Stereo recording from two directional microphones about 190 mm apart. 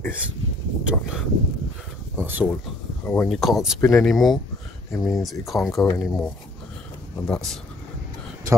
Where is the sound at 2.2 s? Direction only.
10° right (ahead or behind).